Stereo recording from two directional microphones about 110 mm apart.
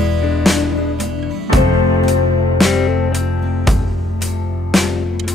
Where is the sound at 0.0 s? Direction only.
Centre (ahead or behind).